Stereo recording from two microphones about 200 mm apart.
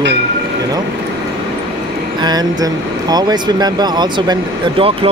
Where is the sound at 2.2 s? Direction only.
20° right (ahead or behind).